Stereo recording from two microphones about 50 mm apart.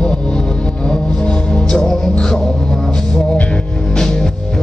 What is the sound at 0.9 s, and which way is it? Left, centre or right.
Music, centre.